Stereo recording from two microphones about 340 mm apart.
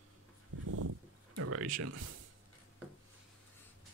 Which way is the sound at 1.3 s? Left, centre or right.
Right.